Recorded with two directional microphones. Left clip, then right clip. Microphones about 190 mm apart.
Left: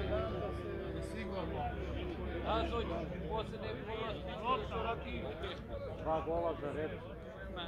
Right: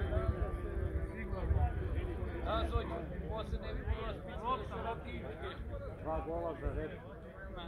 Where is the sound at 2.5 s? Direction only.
45° right (ahead or behind).